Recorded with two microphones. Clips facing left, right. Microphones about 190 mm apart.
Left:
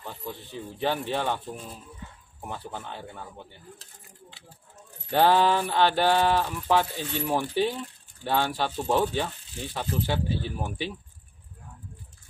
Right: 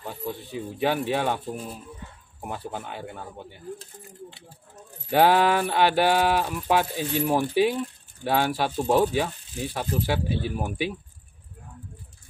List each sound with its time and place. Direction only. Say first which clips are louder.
0.0 s a sound: right 5 dB; 10° right (ahead or behind)
0.5 s speech: right 3 dB; 10° right (ahead or behind)
2.4 s speech: right 3 dB; 10° right (ahead or behind)
5.1 s speech: right 2 dB; 10° right (ahead or behind)